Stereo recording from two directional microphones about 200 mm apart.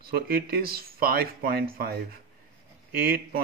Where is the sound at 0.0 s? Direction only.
50° right (ahead or behind).